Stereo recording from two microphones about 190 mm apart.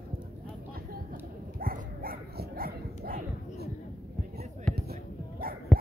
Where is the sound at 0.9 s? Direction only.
50° right (ahead or behind).